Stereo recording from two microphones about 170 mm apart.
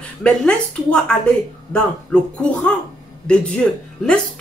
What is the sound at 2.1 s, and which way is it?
A woman's voice, 5° left (ahead or behind).